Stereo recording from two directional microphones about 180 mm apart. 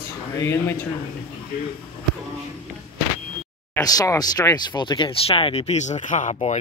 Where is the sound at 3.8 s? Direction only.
20° left (ahead or behind).